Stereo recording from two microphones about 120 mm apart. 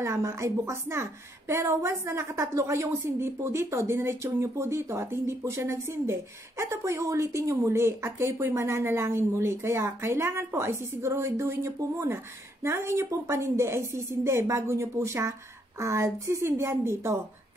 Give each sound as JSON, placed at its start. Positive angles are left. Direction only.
{"t": 0.0, "sound": "speech", "side_deg": -20}